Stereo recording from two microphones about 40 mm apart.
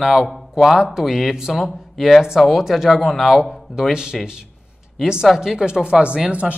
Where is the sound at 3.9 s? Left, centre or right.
Centre.